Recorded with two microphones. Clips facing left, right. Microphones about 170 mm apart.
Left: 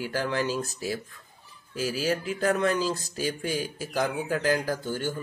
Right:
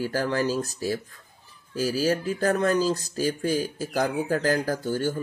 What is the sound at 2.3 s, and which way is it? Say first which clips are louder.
Speech: right 1 dB; 40° right (ahead or behind).